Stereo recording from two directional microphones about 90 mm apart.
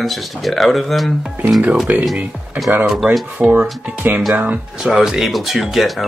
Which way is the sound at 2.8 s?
5° right (ahead or behind).